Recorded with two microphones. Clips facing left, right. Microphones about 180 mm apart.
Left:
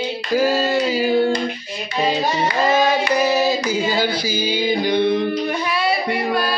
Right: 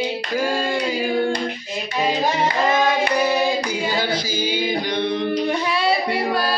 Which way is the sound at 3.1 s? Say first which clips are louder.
Left 2 dB; 5° left (ahead or behind).